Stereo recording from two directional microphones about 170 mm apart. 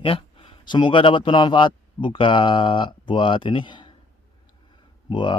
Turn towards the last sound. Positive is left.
turn(degrees=25)  # may be behind; listen again after turning